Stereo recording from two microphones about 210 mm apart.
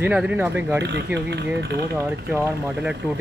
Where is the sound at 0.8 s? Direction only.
55° right (ahead or behind).